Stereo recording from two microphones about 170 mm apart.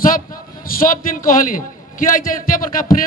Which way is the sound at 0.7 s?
55° left (ahead or behind).